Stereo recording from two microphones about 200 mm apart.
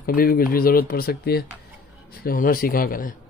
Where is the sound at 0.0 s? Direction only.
50° left (ahead or behind).